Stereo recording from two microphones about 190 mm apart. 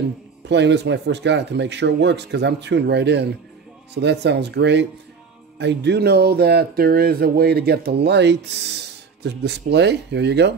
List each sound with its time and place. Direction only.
0.5 s speech: 65° right (ahead or behind)